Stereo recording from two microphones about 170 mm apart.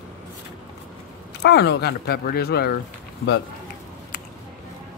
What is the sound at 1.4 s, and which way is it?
Speech, 75° left (ahead or behind).